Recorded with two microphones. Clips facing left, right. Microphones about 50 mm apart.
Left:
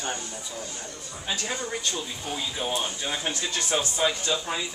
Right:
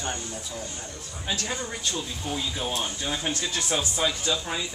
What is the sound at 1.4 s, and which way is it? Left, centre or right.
Speech, centre.